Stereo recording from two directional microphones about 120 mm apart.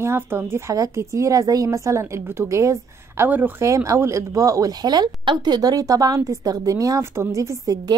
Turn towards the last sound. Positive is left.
turn(degrees=-30)  # may be behind; listen again after turning